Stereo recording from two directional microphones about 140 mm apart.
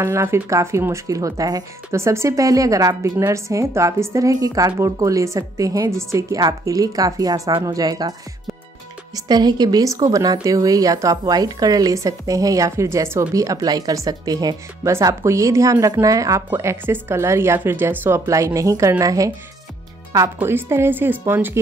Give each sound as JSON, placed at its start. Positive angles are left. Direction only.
{"t": 0.0, "sound": "a woman's voice", "side_deg": -20}
{"t": 20.3, "sound": "speech", "side_deg": -15}